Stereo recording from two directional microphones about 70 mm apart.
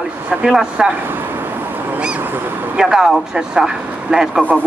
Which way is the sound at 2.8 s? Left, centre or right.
Centre.